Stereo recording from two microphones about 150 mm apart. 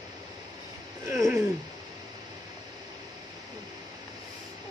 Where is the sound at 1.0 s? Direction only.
20° right (ahead or behind).